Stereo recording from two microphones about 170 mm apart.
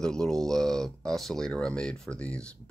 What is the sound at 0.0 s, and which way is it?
Speech, 5° left (ahead or behind).